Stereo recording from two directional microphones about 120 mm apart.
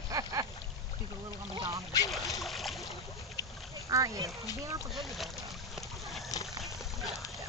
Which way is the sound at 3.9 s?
30° right (ahead or behind).